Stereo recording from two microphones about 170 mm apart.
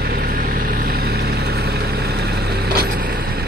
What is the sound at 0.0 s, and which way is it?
Vehicle, 65° right (ahead or behind).